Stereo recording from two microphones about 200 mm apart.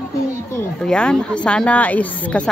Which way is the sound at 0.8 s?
5° left (ahead or behind).